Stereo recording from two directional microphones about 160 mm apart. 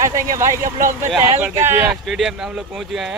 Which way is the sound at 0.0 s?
15° right (ahead or behind).